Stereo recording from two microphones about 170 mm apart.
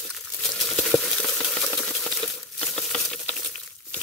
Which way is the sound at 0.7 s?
5° left (ahead or behind).